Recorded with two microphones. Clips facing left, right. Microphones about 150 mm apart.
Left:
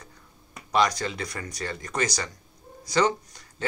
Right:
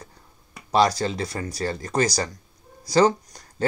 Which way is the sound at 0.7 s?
30° right (ahead or behind).